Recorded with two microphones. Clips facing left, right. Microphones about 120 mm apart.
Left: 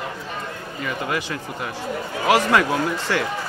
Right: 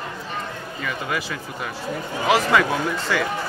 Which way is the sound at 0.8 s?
15° left (ahead or behind).